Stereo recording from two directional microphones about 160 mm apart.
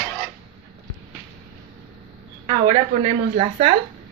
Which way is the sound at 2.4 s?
40° right (ahead or behind).